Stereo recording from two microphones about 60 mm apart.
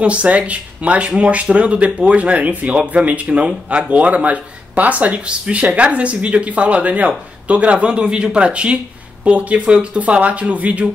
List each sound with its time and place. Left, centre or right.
0.0 s speech: right